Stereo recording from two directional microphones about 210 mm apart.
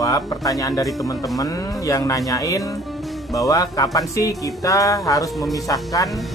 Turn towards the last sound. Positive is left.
turn(degrees=15)  # may be behind; listen again after turning